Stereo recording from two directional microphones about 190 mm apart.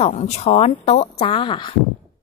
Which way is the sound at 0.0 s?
35° left (ahead or behind).